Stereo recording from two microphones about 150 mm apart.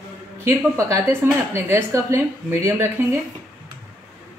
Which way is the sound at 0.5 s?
20° right (ahead or behind).